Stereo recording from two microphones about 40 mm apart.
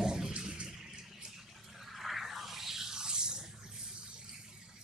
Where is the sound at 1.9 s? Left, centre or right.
Centre.